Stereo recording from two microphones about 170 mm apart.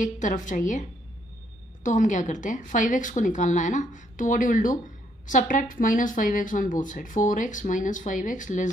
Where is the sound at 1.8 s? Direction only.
45° left (ahead or behind).